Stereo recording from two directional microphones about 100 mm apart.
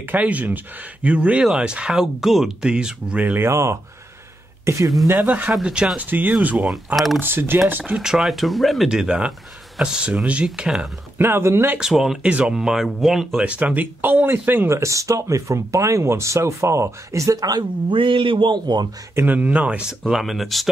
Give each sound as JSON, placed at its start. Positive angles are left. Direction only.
{"t": 0.0, "sound": "speech", "side_deg": -15}
{"t": 3.4, "sound": "speech", "side_deg": -30}
{"t": 5.0, "sound": "speech", "side_deg": -20}
{"t": 11.1, "sound": "speech", "side_deg": -25}
{"t": 11.8, "sound": "speech", "side_deg": -5}
{"t": 13.5, "sound": "speech", "side_deg": -15}
{"t": 19.1, "sound": "speech", "side_deg": -15}
{"t": 20.0, "sound": "speech", "side_deg": 0}